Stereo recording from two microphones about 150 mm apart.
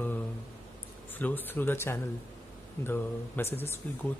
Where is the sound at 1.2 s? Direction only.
10° left (ahead or behind).